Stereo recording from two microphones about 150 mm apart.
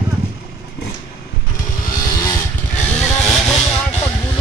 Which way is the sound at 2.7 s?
10° left (ahead or behind).